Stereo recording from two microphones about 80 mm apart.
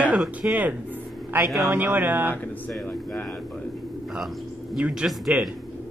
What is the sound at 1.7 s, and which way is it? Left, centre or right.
Speech, right.